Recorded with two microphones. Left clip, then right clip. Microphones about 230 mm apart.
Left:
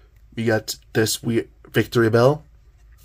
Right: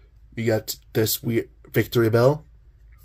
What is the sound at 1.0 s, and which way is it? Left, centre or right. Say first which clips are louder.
Speech: left 2 dB; centre.